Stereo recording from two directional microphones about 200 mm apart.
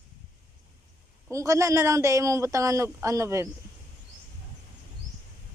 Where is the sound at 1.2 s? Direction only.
15° right (ahead or behind).